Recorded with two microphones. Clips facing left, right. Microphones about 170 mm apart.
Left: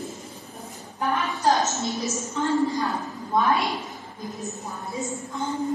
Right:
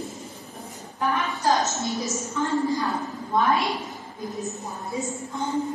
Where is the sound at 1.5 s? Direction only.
Centre (ahead or behind).